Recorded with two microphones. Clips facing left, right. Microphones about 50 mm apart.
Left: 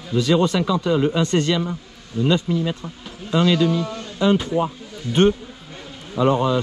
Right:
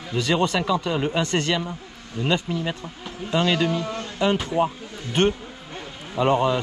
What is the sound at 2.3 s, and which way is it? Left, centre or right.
Speech, right.